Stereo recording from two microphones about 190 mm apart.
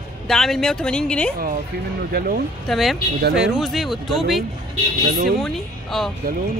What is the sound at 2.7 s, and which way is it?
Speech, centre (ahead or behind).